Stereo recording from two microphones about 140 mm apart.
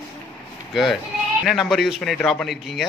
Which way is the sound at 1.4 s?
Centre (ahead or behind).